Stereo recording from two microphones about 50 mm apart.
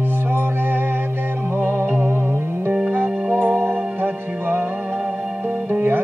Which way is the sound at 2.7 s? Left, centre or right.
Right.